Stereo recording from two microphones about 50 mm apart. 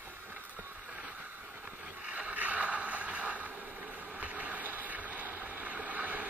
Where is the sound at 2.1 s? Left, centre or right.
Right.